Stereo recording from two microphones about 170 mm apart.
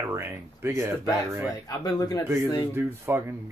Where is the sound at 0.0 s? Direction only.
15° right (ahead or behind).